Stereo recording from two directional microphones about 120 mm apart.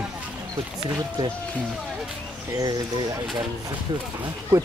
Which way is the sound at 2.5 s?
25° right (ahead or behind).